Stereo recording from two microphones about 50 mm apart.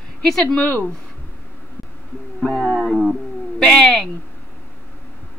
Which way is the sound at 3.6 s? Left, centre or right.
Centre.